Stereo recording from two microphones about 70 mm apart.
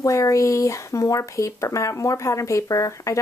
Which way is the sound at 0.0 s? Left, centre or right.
Left.